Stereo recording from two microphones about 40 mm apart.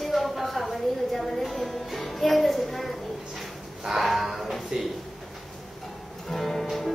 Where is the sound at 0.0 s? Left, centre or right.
Centre.